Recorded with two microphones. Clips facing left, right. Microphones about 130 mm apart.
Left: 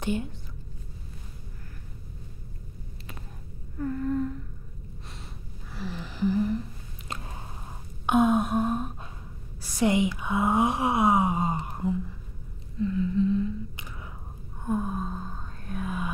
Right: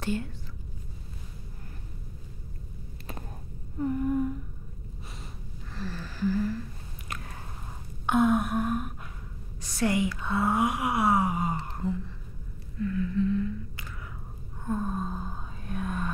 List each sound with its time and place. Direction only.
0.0 s a woman's voice: 20° left (ahead or behind)
3.7 s humming: 15° right (ahead or behind)
5.8 s a sound: 15° left (ahead or behind)
8.1 s gasp: 20° left (ahead or behind)
9.6 s gasp: 15° left (ahead or behind)
11.6 s a sound: 15° left (ahead or behind)
14.6 s gasp: 10° left (ahead or behind)